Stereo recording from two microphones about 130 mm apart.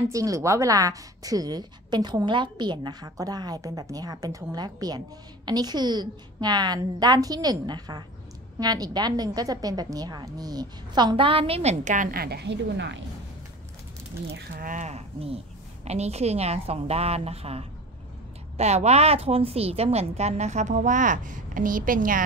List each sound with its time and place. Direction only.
0.1 s a woman's voice: 25° right (ahead or behind); by 12.1 s 70° right (ahead or behind)
14.5 s a woman's voice: 90° right